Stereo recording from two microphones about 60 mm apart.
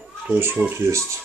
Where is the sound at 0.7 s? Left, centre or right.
Right.